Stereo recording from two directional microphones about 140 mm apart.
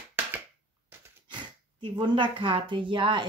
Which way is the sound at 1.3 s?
35° right (ahead or behind).